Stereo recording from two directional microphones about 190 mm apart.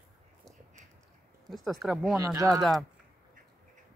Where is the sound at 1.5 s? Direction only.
Centre (ahead or behind).